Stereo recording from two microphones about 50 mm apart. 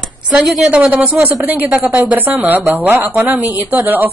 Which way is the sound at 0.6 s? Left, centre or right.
Right.